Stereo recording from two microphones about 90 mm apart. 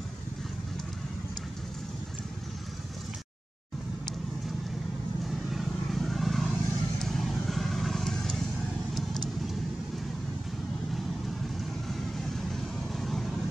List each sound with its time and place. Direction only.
5.2 s vehicle: centre (ahead or behind)
11.9 s vehicle: 5° left (ahead or behind)